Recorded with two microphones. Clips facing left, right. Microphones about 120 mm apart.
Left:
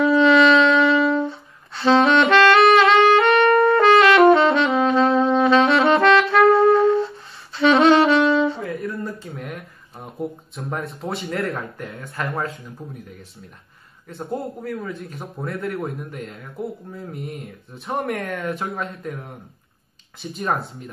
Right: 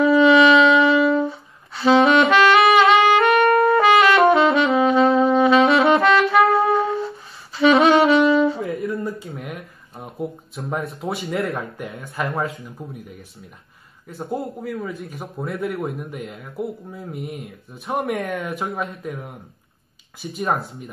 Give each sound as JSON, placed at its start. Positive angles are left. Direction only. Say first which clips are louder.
{"t": 0.0, "sound": "wind instrument", "louder": "right 1 dB", "side_deg": 0}
{"t": 8.6, "sound": "a sound", "louder": "right 2 dB", "side_deg": -25}
{"t": 9.3, "sound": "a sound", "louder": "even", "side_deg": 0}
{"t": 11.3, "sound": "speech", "louder": "right 2 dB", "side_deg": -20}
{"t": 12.4, "sound": "speech", "louder": "right 2 dB", "side_deg": 0}
{"t": 14.0, "sound": "speech", "louder": "right 1 dB", "side_deg": 0}